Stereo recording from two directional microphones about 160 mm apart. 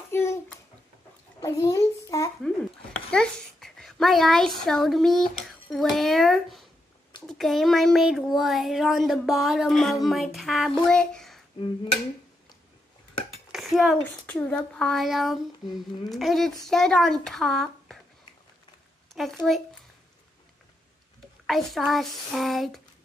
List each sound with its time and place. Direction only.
0.1 s a sound: 15° left (ahead or behind)
1.4 s a child's voice: 20° left (ahead or behind)
2.4 s a child's voice: 5° left (ahead or behind)
13.5 s a child's voice: centre (ahead or behind)
19.1 s a child's voice: centre (ahead or behind)
21.5 s a child's voice: centre (ahead or behind)